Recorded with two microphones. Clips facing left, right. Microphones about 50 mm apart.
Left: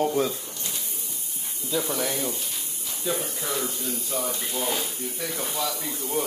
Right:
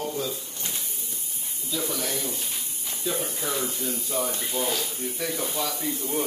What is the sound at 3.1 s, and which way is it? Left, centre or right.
Speech, centre.